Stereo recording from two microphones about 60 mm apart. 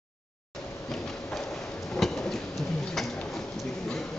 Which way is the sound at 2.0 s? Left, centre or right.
Centre.